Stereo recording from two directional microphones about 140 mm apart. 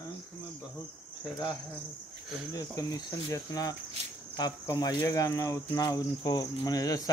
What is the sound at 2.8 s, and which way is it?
Speech, 25° left (ahead or behind).